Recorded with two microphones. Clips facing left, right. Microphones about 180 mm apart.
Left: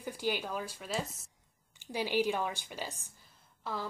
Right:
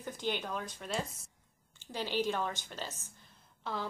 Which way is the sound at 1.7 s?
10° left (ahead or behind).